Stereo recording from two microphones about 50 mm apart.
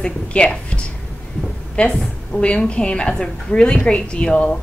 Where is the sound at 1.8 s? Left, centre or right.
Left.